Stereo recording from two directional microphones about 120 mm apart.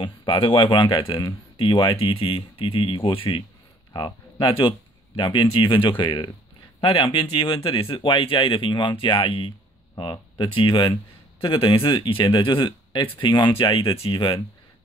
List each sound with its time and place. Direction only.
0.0 s speech: 40° left (ahead or behind)